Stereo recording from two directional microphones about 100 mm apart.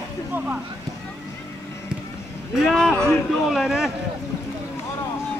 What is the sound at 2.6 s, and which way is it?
Speech, 5° left (ahead or behind).